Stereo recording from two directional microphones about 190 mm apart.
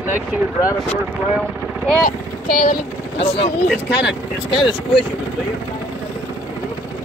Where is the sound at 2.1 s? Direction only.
50° left (ahead or behind).